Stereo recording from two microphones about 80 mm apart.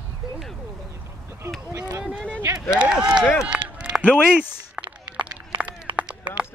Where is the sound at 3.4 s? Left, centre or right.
Centre.